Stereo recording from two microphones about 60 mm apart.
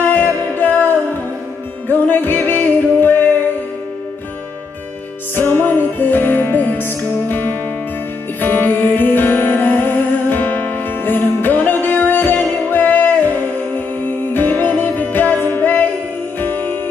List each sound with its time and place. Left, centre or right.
0.0 s music: left
5.3 s music: left